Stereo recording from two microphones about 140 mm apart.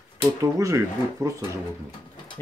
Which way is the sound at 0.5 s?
20° right (ahead or behind).